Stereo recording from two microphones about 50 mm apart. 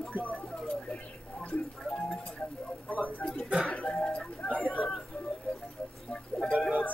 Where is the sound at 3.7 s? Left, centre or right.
Left.